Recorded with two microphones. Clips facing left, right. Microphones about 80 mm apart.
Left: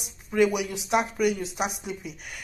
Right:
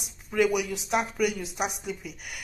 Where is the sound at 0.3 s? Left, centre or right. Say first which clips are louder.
Left 2 dB; centre.